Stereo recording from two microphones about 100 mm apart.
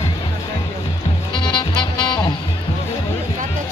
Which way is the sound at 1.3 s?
50° left (ahead or behind).